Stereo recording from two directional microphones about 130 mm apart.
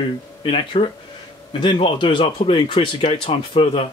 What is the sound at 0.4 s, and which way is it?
Speech, 45° left (ahead or behind).